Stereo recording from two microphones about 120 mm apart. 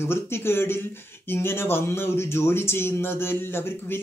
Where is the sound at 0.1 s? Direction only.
20° left (ahead or behind).